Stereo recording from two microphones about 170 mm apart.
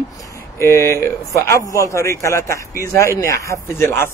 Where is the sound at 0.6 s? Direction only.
15° left (ahead or behind).